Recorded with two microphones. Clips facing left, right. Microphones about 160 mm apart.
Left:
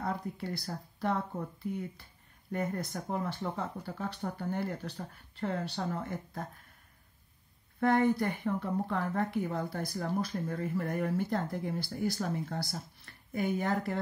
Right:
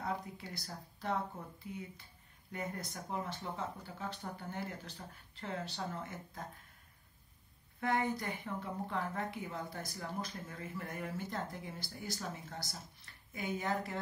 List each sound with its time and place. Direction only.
0.0 s a sound: 55° left (ahead or behind)
0.6 s speech: 65° left (ahead or behind)
2.5 s speech: 40° left (ahead or behind)
2.8 s speech: 55° left (ahead or behind)
7.8 s speech: 55° left (ahead or behind)